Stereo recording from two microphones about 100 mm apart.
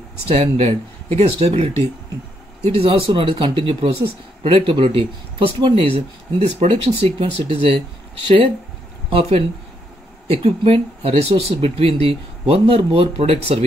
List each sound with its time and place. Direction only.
0.3 s speech: 75° right (ahead or behind)
2.7 s speech: 70° right (ahead or behind)
9.1 s speech: 80° right